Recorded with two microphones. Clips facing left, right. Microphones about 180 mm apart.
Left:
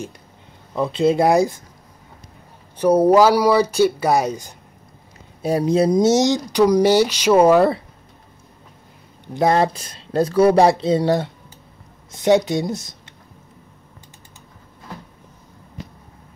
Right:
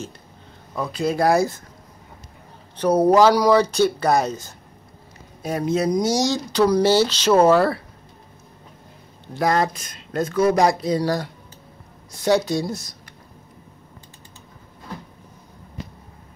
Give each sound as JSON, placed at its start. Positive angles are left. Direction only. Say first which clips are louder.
{"t": 0.7, "sound": "speech", "louder": "left 5 dB", "side_deg": 20}
{"t": 2.8, "sound": "speech", "louder": "left 2 dB", "side_deg": 10}
{"t": 5.4, "sound": "speech", "louder": "left 5 dB", "side_deg": 35}
{"t": 9.3, "sound": "speech", "louder": "left 3 dB", "side_deg": 25}